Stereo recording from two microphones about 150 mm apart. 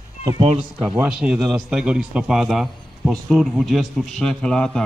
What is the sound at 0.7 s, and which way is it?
A man's voice, 10° right (ahead or behind).